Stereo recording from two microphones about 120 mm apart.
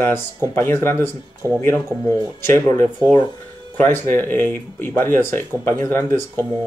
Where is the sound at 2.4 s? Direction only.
20° left (ahead or behind).